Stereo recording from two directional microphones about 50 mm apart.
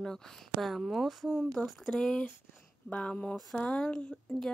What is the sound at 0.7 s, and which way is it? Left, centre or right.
Speech, centre.